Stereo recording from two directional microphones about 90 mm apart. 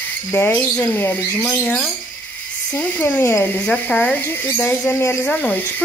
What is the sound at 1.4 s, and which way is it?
Speech, 10° left (ahead or behind).